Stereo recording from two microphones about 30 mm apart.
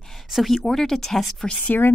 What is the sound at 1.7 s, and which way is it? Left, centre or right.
Speech, left.